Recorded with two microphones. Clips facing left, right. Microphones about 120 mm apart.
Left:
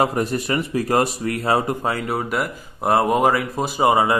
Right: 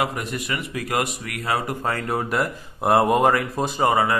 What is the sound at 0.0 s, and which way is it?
Speech, 35° left (ahead or behind).